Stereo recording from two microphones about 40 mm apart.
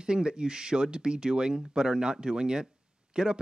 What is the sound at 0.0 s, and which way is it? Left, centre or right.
Speech, right.